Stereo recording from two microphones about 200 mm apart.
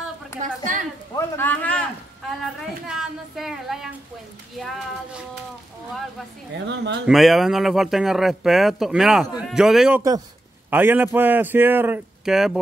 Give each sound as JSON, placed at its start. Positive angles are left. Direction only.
{"t": 0.4, "sound": "a woman's voice", "side_deg": -40}
{"t": 1.1, "sound": "a man's voice", "side_deg": 10}
{"t": 2.9, "sound": "speech", "side_deg": 0}
{"t": 6.5, "sound": "speech", "side_deg": -60}
{"t": 7.1, "sound": "speech", "side_deg": 0}